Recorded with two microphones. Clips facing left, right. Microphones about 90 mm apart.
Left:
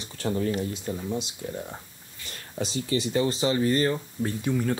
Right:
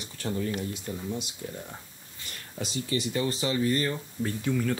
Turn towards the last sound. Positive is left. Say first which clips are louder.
# left 2 dB
turn(degrees=20)  # may be behind; listen again after turning